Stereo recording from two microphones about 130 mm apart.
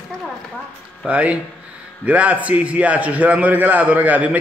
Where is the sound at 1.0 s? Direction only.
10° right (ahead or behind).